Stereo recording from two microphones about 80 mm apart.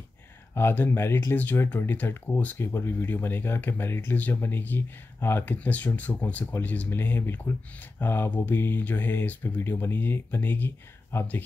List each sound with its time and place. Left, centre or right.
0.6 s speech: left